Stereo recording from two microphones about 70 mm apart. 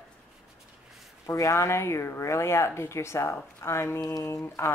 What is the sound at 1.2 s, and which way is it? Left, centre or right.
Speech, left.